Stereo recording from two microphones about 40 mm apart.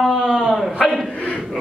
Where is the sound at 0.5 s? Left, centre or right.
Centre.